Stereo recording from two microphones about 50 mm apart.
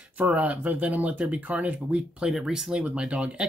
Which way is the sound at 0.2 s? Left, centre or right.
Right.